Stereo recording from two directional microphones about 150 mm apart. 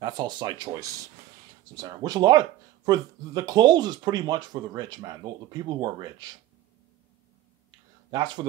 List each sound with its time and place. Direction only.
0.0 s speech: 30° right (ahead or behind)
8.1 s speech: 30° right (ahead or behind)